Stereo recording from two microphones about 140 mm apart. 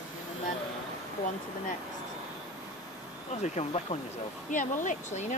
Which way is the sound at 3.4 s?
55° left (ahead or behind).